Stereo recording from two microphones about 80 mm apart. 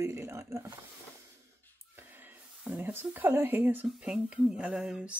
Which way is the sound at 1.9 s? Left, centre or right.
Right.